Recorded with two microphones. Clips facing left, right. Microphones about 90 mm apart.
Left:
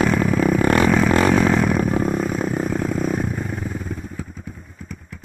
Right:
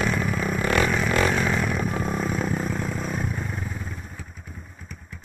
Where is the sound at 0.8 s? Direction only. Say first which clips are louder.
Left 7 dB; 60° left (ahead or behind).